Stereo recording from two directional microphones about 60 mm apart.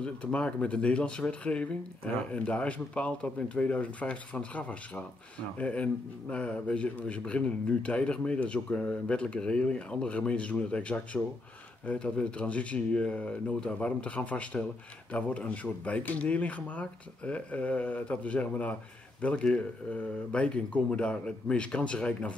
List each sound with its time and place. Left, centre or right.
0.0 s a man's voice: centre